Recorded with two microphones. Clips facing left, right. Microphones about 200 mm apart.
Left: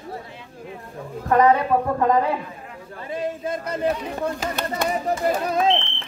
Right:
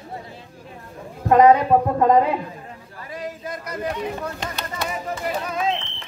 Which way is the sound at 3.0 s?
25° left (ahead or behind).